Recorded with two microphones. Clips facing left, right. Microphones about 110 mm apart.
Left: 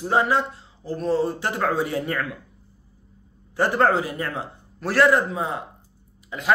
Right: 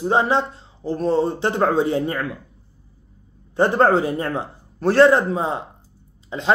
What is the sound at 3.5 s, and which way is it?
A man's voice, 25° right (ahead or behind).